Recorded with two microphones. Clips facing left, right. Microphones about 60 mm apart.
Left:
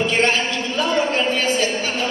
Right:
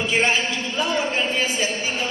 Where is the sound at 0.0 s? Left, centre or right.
Centre.